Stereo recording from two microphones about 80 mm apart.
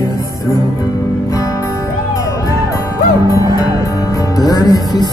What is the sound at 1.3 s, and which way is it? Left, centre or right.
Music, left.